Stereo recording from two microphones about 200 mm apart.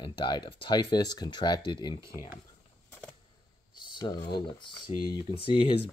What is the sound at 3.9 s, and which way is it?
Speech, 25° left (ahead or behind).